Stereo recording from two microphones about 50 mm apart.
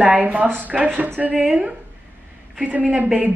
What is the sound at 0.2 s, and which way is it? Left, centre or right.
Speech, right.